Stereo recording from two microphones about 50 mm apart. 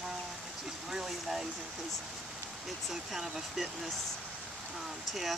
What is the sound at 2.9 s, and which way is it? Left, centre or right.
Speech, centre.